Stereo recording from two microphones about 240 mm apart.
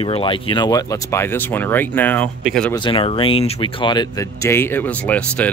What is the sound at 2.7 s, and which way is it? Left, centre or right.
Speech, left.